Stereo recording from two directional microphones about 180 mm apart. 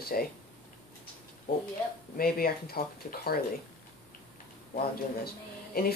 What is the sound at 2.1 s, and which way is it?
Speech, 55° left (ahead or behind).